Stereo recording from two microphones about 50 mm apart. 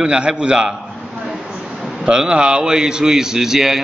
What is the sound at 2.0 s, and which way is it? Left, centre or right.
A man's voice, centre.